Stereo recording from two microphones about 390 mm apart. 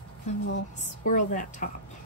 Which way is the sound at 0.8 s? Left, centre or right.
Centre.